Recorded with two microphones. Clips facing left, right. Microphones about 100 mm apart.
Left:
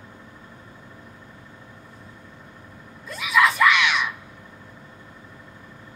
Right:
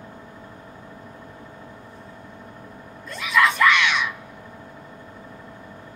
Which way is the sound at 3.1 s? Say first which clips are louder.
Even; 5° left (ahead or behind).